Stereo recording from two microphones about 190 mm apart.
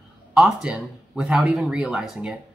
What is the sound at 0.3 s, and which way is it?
Speech, 5° right (ahead or behind).